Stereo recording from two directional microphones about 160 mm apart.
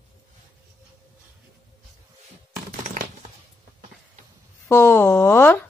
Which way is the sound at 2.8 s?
50° right (ahead or behind).